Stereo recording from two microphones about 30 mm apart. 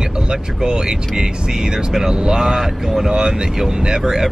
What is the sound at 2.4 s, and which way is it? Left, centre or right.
Speech, centre.